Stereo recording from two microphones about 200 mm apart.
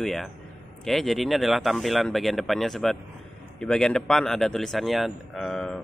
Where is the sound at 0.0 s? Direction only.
Centre (ahead or behind).